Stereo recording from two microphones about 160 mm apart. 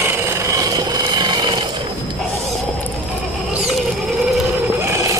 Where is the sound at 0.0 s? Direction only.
15° right (ahead or behind).